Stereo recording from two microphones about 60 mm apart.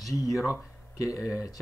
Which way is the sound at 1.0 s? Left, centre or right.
Left.